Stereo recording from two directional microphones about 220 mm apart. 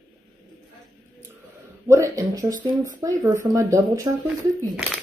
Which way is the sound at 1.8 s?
15° right (ahead or behind).